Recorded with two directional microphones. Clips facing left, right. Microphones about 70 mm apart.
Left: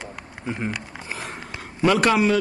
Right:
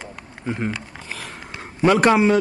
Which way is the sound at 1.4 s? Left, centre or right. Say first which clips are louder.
Right 3 dB; right.